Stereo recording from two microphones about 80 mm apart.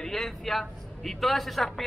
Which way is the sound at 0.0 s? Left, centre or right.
Centre.